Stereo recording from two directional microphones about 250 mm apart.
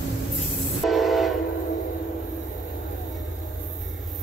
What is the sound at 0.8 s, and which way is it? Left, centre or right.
Train, centre.